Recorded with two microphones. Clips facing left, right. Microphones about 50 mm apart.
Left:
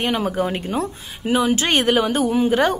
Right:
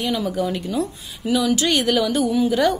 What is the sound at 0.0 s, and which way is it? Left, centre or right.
A woman's voice, left.